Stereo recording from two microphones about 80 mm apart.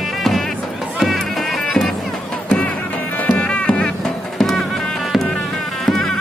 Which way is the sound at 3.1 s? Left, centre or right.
Centre.